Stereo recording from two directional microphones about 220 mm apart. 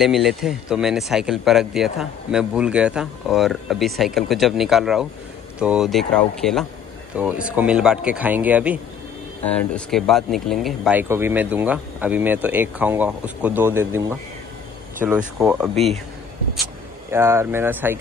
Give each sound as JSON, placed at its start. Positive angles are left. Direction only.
{"t": 0.0, "sound": "speech", "side_deg": 0}
{"t": 9.4, "sound": "speech", "side_deg": 5}
{"t": 17.1, "sound": "speech", "side_deg": -10}